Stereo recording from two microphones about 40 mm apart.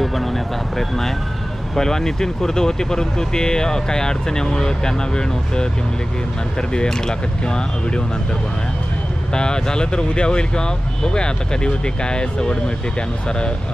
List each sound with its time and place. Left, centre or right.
0.0 s a sound: centre
1.8 s speech: centre
6.9 s speech: centre
9.3 s speech: left